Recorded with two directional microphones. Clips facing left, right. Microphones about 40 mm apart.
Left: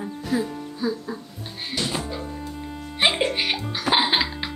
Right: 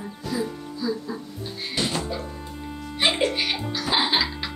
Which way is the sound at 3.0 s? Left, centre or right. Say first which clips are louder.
Left 1 dB; centre.